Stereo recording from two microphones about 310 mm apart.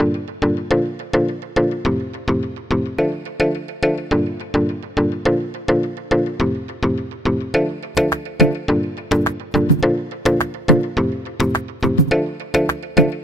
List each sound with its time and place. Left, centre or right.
0.0 s music: centre